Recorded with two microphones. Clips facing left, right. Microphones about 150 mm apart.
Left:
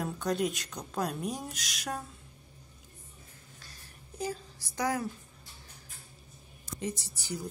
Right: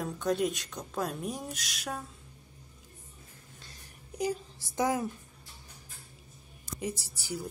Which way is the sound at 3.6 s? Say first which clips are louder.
Right 1 dB; 20° right (ahead or behind).